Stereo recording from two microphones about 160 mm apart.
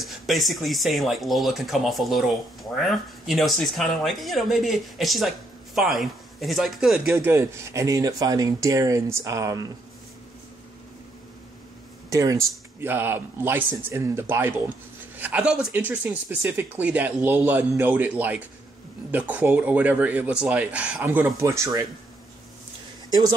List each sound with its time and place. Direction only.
0.0 s speech: centre (ahead or behind)
7.2 s a man's voice: 15° right (ahead or behind)
12.1 s a man's voice: 20° right (ahead or behind)
23.0 s a sound: 25° right (ahead or behind)